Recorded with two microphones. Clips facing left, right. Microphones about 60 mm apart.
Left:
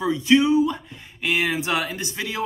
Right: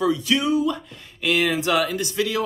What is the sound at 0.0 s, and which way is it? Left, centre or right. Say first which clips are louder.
Speech: left 3 dB; left.